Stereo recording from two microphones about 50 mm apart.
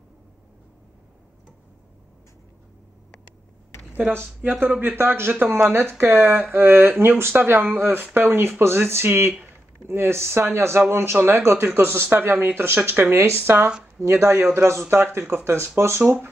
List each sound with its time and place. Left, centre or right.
4.4 s speech: right
4.9 s speech: right